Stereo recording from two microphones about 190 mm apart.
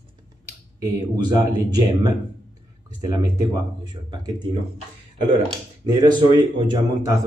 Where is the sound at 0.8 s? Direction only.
20° right (ahead or behind).